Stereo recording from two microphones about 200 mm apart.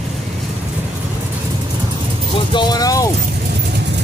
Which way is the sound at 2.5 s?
20° left (ahead or behind).